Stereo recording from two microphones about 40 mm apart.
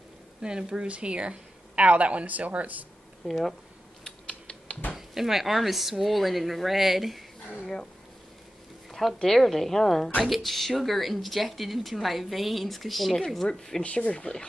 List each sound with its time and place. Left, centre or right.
0.4 s speech: right
3.3 s speech: centre
4.3 s typing: left
4.9 s speech: centre
7.6 s a woman's voice: centre
9.2 s a woman's voice: centre
13.5 s a woman's voice: centre
13.8 s speech: left